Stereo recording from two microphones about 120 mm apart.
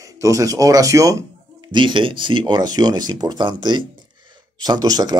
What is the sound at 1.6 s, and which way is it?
Speech, 40° right (ahead or behind).